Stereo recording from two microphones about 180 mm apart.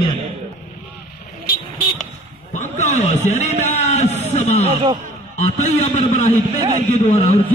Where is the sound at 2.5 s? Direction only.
40° left (ahead or behind).